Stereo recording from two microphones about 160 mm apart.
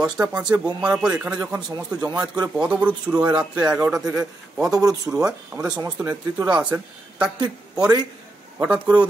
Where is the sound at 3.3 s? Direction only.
25° right (ahead or behind).